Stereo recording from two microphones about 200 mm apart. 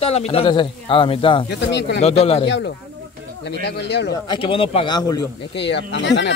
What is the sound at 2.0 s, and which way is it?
Speech, 30° left (ahead or behind).